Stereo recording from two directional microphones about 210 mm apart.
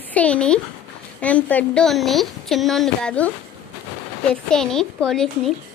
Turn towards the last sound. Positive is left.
turn(degrees=0)  # may be behind; listen again after turning